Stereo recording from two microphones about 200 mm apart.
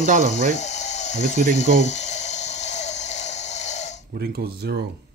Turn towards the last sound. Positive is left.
turn(degrees=-55)  # may be behind; listen again after turning